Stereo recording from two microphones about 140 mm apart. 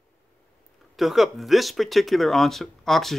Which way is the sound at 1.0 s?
Centre (ahead or behind).